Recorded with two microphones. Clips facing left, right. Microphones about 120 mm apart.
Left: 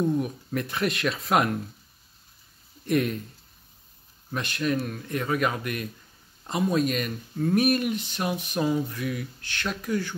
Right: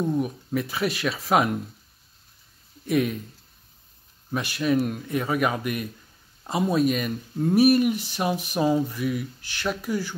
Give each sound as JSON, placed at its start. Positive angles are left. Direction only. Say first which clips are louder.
{"t": 0.0, "sound": "speech", "louder": "even", "side_deg": 0}
{"t": 2.8, "sound": "speech", "louder": "right 1 dB", "side_deg": 0}
{"t": 4.3, "sound": "speech", "louder": "right 3 dB", "side_deg": -5}